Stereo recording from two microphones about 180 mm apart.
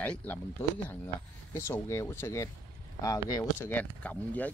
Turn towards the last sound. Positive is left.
turn(degrees=10)  # may be behind; listen again after turning